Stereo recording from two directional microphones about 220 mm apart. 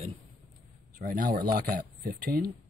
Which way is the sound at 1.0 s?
40° right (ahead or behind).